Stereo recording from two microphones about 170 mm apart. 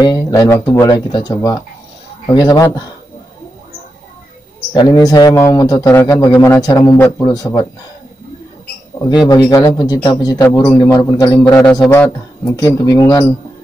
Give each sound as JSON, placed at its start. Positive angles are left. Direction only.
{"t": 0.0, "sound": "speech", "side_deg": 20}
{"t": 4.7, "sound": "speech", "side_deg": 25}
{"t": 9.1, "sound": "speech", "side_deg": 25}
{"t": 11.4, "sound": "a man's voice", "side_deg": 5}